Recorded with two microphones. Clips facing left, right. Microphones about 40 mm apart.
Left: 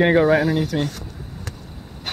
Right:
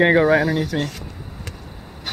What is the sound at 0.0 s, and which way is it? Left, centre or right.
Speech, centre.